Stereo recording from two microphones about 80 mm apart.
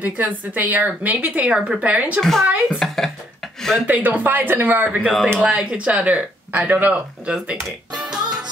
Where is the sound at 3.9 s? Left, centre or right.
Right.